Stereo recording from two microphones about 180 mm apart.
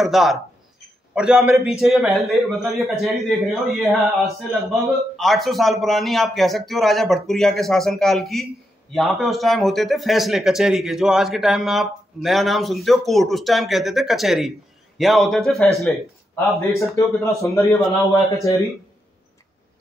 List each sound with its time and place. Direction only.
0.0 s speech: centre (ahead or behind)
16.3 s speech: 15° left (ahead or behind)